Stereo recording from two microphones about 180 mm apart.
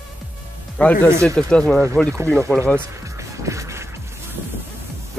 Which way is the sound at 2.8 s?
15° right (ahead or behind).